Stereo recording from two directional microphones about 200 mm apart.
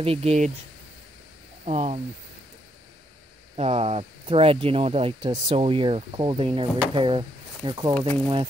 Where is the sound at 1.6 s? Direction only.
35° right (ahead or behind).